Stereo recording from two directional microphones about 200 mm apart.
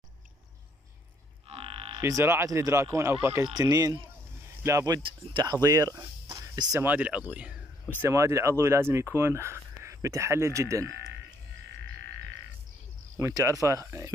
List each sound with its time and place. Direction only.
1.5 s a sound: 30° right (ahead or behind)
2.0 s speech: 15° right (ahead or behind)
13.2 s speech: 15° right (ahead or behind)